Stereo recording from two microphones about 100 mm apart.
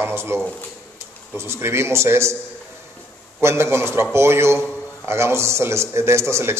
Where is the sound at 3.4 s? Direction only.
25° right (ahead or behind).